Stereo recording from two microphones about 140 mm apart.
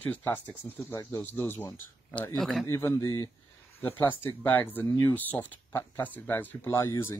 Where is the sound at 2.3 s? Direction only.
Centre (ahead or behind).